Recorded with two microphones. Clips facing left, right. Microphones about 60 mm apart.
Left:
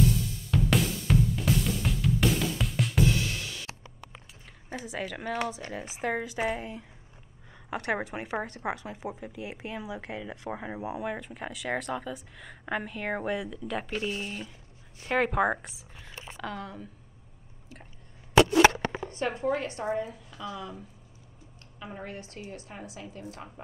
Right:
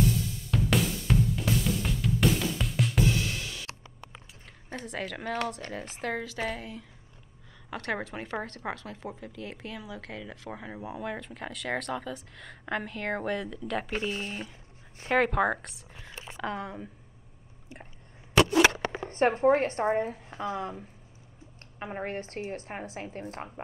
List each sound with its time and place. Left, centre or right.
0.0 s drum: centre
4.6 s a woman's voice: centre
13.9 s speech: right
15.1 s a woman's voice: centre
16.3 s speech: right
18.5 s a sound: centre
18.9 s a woman's voice: right